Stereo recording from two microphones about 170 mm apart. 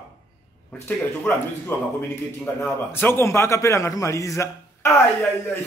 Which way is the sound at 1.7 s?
15° left (ahead or behind).